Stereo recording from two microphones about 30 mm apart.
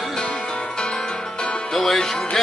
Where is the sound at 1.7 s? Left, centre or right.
Centre.